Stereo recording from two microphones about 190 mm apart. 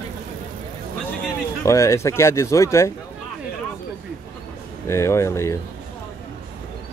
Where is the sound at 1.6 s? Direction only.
15° left (ahead or behind).